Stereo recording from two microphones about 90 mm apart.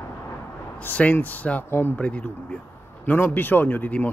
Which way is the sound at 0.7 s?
15° left (ahead or behind).